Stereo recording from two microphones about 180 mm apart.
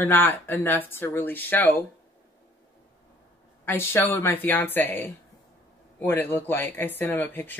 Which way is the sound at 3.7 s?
15° left (ahead or behind).